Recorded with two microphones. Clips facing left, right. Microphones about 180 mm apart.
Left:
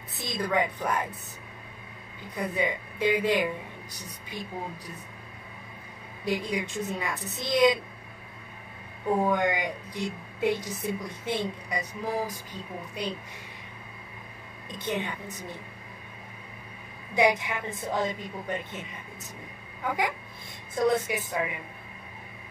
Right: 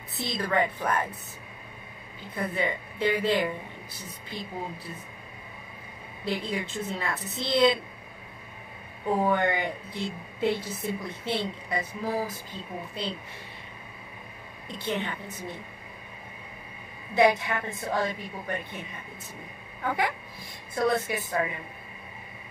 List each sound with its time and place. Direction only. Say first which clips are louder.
0.2 s a woman's voice: right 1 dB; 15° left (ahead or behind)
2.3 s a woman's voice: even; 15° left (ahead or behind)
6.2 s a woman's voice: left 1 dB; 15° left (ahead or behind)
9.1 s a woman's voice: even; 10° left (ahead or behind)
14.7 s a woman's voice: even; 15° left (ahead or behind)
17.1 s a woman's voice: right 2 dB; 15° left (ahead or behind)
19.8 s a woman's voice: right 1 dB; 10° left (ahead or behind)